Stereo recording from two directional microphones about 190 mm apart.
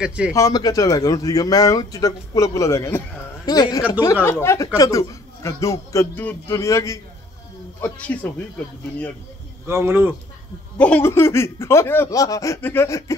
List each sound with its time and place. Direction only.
0.0 s speech: 5° right (ahead or behind)
0.3 s a man's voice: 20° left (ahead or behind)
9.7 s speech: 15° right (ahead or behind)
10.8 s a man's voice: 10° left (ahead or behind)